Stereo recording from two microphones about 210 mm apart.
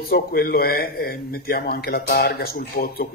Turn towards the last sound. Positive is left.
turn(degrees=45)  # may be behind; listen again after turning